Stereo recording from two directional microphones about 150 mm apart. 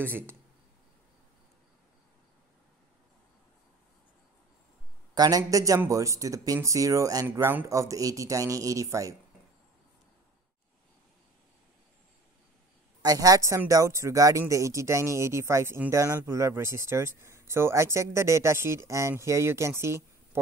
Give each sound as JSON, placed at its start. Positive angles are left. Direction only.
{"t": 0.0, "sound": "speech", "side_deg": -15}
{"t": 5.1, "sound": "speech", "side_deg": -25}
{"t": 13.0, "sound": "speech", "side_deg": -25}